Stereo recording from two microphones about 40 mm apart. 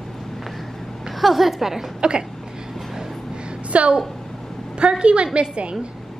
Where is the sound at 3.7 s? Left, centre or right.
Right.